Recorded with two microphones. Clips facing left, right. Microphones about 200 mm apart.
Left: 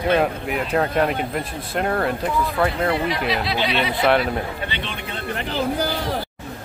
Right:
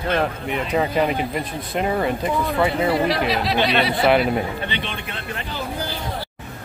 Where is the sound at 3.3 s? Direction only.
40° right (ahead or behind).